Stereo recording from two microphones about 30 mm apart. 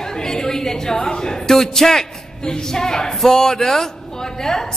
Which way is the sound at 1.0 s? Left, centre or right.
Left.